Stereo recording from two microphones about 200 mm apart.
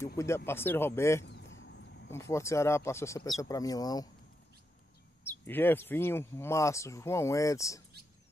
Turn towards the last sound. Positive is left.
turn(degrees=15)  # may be behind; listen again after turning